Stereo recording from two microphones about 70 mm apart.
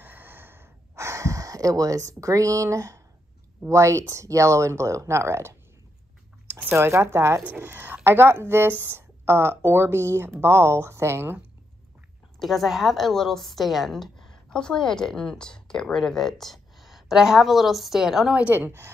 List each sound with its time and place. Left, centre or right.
0.0 s gasp: right
3.6 s speech: right
6.7 s speech: right
12.4 s a woman's voice: centre
18.5 s speech: right